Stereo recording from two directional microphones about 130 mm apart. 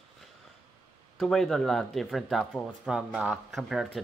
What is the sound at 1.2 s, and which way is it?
Speech, 5° left (ahead or behind).